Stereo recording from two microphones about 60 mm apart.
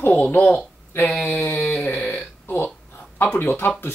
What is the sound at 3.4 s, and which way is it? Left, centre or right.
Speech, left.